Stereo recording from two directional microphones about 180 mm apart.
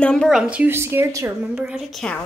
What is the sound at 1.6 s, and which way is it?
Speech, centre (ahead or behind).